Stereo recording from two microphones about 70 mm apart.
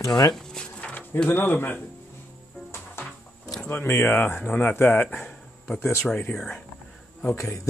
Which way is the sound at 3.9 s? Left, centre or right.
Left.